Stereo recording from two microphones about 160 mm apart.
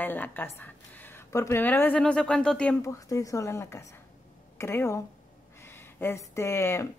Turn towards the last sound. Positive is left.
turn(degrees=15)  # may be behind; listen again after turning